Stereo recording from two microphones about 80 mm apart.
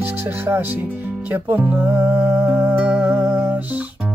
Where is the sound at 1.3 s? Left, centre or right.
Right.